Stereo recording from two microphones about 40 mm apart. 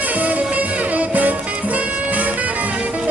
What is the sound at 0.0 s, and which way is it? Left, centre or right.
Music, right.